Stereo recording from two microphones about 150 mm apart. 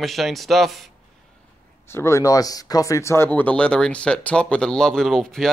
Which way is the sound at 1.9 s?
20° left (ahead or behind).